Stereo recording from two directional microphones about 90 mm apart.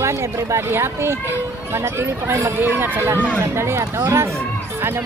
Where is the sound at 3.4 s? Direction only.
30° right (ahead or behind).